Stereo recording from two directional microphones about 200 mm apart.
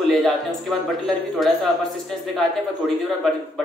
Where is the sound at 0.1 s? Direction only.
Centre (ahead or behind).